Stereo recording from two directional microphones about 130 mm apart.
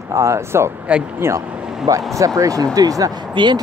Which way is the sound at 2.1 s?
25° right (ahead or behind).